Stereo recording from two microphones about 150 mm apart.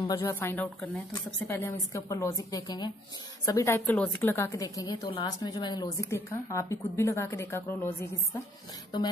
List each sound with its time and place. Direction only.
0.0 s a woman's voice: 20° left (ahead or behind)